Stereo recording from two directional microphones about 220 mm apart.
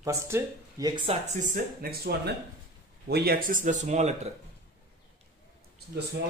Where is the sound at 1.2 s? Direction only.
35° right (ahead or behind).